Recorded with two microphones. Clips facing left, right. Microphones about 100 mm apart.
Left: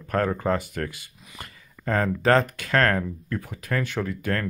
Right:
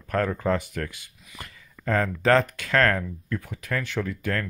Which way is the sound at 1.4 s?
15° left (ahead or behind).